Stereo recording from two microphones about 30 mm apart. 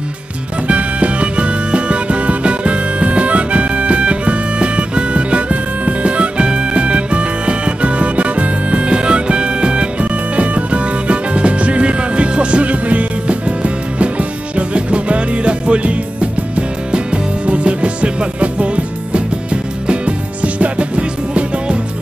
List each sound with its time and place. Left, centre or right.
0.7 s music: right